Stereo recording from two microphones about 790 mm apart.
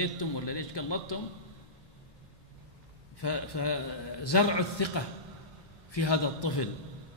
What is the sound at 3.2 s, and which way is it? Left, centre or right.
A man's voice, left.